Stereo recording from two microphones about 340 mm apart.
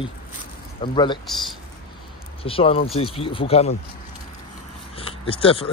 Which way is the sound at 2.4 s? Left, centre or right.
Centre.